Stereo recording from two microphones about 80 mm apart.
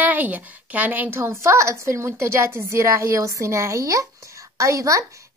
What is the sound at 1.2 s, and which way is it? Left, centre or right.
Speech, right.